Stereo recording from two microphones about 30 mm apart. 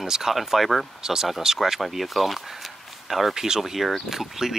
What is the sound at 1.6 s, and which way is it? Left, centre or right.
Speech, centre.